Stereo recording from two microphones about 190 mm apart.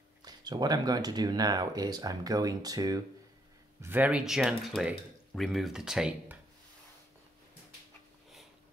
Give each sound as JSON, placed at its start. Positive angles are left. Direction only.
{"t": 0.2, "sound": "speech", "side_deg": -20}